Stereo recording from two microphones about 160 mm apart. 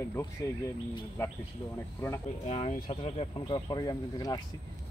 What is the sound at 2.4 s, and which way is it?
Speech, 45° left (ahead or behind).